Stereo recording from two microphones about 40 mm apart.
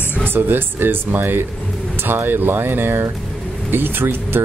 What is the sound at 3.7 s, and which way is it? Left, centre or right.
Speech, right.